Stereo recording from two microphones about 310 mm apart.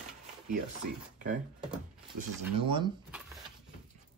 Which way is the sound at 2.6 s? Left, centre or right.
Centre.